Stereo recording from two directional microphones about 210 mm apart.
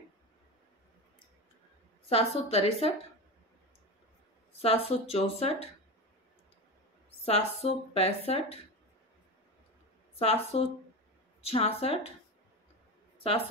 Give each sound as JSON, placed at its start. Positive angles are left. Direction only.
{"t": 2.0, "sound": "speech", "side_deg": 30}
{"t": 4.6, "sound": "speech", "side_deg": 30}
{"t": 7.2, "sound": "speech", "side_deg": 30}
{"t": 10.1, "sound": "speech", "side_deg": 30}